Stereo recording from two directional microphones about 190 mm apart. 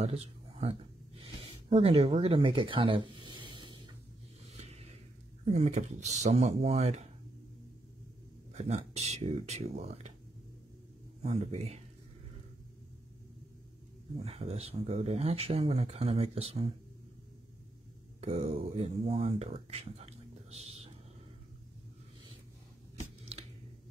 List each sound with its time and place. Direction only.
0.0 s a sound: 30° right (ahead or behind)
5.4 s speech: 35° right (ahead or behind)
8.5 s speech: 35° right (ahead or behind)
11.2 s speech: 35° right (ahead or behind)
14.2 s speech: 30° right (ahead or behind)
18.2 s speech: 30° right (ahead or behind)